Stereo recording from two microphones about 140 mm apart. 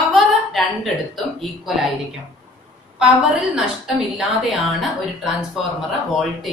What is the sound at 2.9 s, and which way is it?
A woman's voice, 5° right (ahead or behind).